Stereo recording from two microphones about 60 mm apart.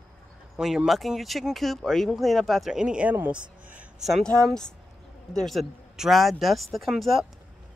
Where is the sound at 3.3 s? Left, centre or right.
Centre.